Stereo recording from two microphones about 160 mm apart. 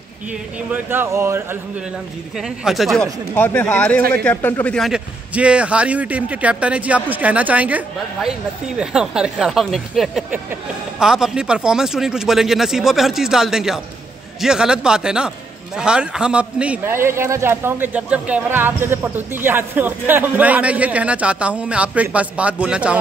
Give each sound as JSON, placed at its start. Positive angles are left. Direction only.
{"t": 0.8, "sound": "a man's voice", "side_deg": -15}
{"t": 2.6, "sound": "speech", "side_deg": 0}
{"t": 3.3, "sound": "a man's voice", "side_deg": 10}